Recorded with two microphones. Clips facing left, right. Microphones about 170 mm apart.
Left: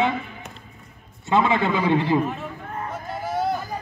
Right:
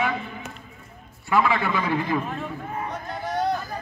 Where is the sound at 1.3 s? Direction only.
25° left (ahead or behind).